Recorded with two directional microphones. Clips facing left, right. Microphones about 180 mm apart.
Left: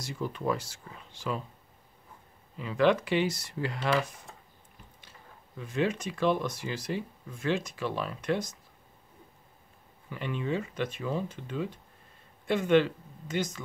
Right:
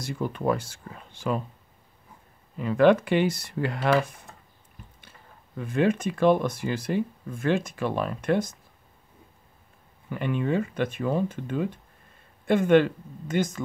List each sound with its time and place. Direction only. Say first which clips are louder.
0.0 s speech: right 5 dB; 55° right (ahead or behind)
2.5 s speech: right 6 dB; 50° right (ahead or behind)
5.6 s speech: right 6 dB; 55° right (ahead or behind)
10.0 s speech: right 6 dB; 55° right (ahead or behind)